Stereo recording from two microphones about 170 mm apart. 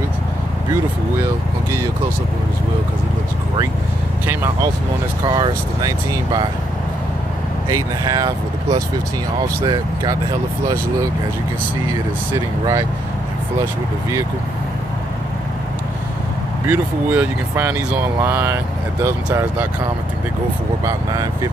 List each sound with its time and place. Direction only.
5.3 s speech: 25° right (ahead or behind)
7.7 s speech: 20° right (ahead or behind)
9.6 s speech: 25° right (ahead or behind)
12.3 s speech: 20° right (ahead or behind)
16.6 s speech: 10° right (ahead or behind)
20.8 s speech: 20° right (ahead or behind)